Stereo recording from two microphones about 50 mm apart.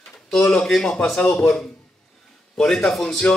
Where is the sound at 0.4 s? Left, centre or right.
Centre.